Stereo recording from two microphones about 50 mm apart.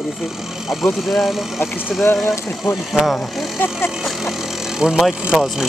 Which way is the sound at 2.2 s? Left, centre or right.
Left.